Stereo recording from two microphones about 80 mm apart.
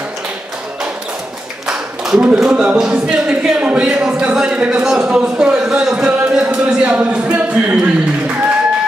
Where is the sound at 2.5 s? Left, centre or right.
Centre.